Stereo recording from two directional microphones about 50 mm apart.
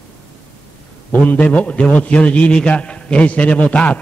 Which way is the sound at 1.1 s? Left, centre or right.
Left.